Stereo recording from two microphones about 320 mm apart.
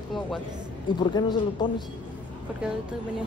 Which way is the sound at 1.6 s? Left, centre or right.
Centre.